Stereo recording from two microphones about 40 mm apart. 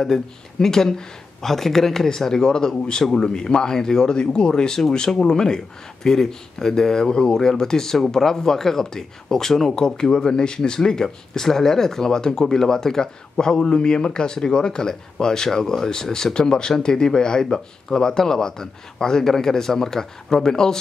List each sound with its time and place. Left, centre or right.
0.0 s speech: centre